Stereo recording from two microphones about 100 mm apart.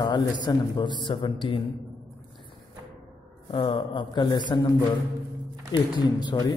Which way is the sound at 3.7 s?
55° left (ahead or behind).